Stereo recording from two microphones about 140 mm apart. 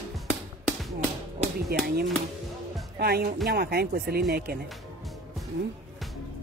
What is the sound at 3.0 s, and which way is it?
Speech, 90° right.